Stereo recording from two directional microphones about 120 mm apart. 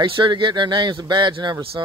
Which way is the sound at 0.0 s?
45° right (ahead or behind).